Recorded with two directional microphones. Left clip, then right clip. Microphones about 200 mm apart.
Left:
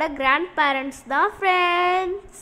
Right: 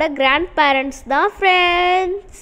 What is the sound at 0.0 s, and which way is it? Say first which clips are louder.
A woman's voice: right 5 dB; 10° right (ahead or behind).